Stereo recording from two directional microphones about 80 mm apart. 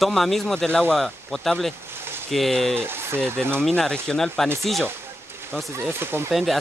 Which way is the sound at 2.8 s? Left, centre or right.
Right.